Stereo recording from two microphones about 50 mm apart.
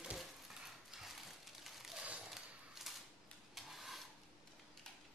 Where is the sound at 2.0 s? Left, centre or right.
Right.